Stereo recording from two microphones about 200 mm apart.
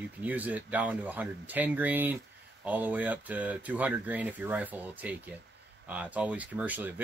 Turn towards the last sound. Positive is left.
turn(degrees=-10)  # may be behind; listen again after turning